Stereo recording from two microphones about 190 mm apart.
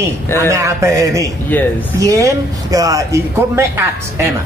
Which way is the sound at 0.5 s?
15° right (ahead or behind).